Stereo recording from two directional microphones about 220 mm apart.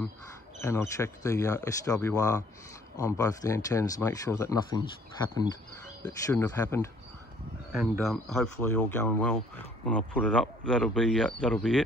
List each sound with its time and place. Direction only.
0.6 s speech: 10° left (ahead or behind)
6.0 s speech: 15° left (ahead or behind)
8.0 s speech: centre (ahead or behind)